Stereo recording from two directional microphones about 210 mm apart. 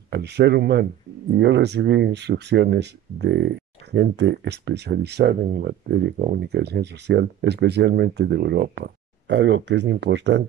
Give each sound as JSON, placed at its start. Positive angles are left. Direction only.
{"t": 0.1, "sound": "speech", "side_deg": -50}